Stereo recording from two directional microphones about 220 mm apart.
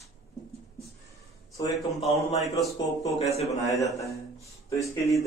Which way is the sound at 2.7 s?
15° left (ahead or behind).